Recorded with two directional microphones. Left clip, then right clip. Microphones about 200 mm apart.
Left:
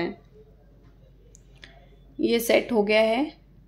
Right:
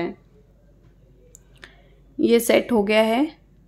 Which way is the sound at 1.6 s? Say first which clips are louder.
Right 3 dB; 25° right (ahead or behind).